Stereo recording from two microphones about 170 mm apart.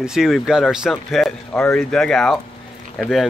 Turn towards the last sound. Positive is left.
turn(degrees=0)  # may be behind; listen again after turning